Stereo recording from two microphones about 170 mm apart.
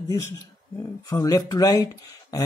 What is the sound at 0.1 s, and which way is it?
Speech, 20° left (ahead or behind).